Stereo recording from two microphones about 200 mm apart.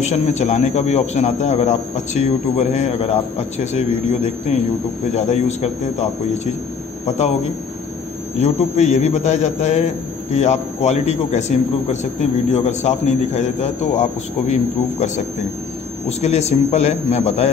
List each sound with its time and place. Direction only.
0.0 s a man's voice: 35° left (ahead or behind)
5.1 s a man's voice: 35° left (ahead or behind)
8.4 s a man's voice: 35° left (ahead or behind)